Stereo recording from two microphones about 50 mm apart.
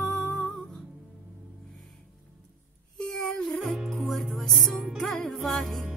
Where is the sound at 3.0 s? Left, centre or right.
Centre.